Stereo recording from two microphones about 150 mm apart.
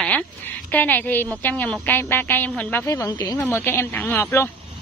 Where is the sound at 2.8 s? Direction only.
20° left (ahead or behind).